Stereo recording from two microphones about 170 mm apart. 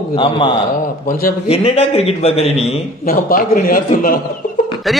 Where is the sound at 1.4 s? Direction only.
35° left (ahead or behind).